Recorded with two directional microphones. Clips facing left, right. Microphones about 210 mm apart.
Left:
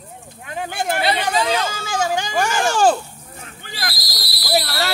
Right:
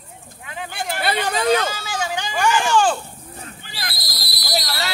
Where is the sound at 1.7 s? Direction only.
50° left (ahead or behind).